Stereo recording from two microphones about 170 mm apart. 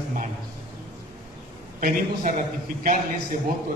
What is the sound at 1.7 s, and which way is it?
A man's voice, 50° right (ahead or behind).